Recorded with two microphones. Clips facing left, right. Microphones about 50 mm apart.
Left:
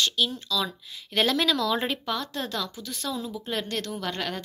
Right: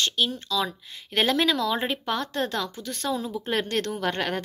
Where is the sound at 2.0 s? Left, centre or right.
Right.